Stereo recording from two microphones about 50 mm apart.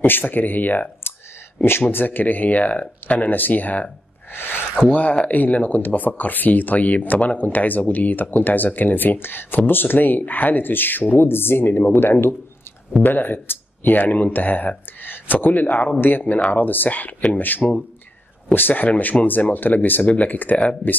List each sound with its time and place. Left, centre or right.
0.0 s speech: left
1.6 s speech: left
4.3 s speech: left
5.3 s speech: left